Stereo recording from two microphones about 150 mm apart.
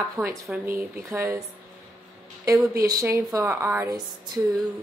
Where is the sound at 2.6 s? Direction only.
20° right (ahead or behind).